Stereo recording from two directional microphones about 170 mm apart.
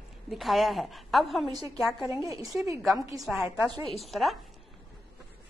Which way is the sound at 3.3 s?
Centre (ahead or behind).